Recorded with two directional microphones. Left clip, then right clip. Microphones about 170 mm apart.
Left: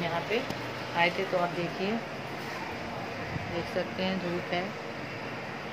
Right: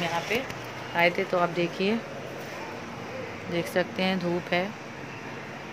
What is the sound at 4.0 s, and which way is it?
Speech, 70° right (ahead or behind).